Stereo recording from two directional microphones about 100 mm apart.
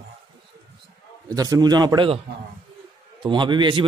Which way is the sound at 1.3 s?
40° right (ahead or behind).